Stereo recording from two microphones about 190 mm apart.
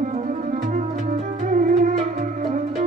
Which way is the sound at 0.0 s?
40° right (ahead or behind).